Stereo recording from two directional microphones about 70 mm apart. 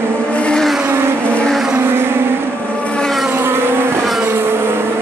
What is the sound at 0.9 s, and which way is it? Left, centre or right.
Vehicle, right.